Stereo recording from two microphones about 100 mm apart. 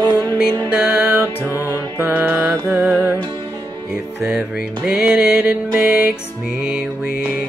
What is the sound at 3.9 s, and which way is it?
Music, 10° right (ahead or behind).